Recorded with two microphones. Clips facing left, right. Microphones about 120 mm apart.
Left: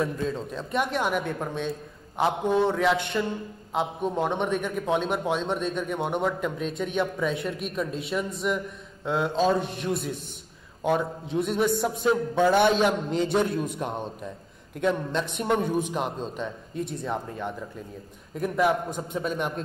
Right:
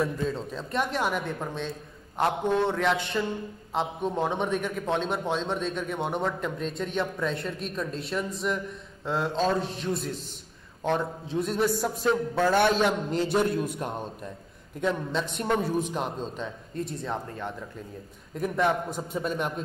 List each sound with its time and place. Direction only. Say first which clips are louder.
0.0 s speech: even; centre (ahead or behind)